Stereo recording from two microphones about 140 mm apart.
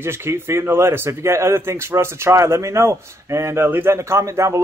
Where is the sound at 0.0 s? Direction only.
20° right (ahead or behind).